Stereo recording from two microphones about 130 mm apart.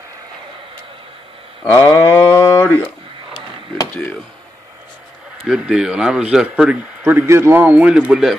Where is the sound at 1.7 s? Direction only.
15° left (ahead or behind).